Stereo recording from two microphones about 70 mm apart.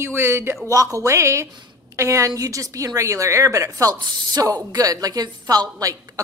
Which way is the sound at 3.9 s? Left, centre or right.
Right.